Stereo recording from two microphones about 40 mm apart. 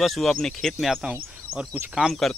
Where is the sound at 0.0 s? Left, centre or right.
Centre.